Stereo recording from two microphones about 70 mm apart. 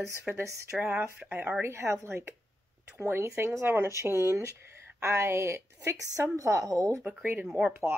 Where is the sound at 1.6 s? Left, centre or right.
Right.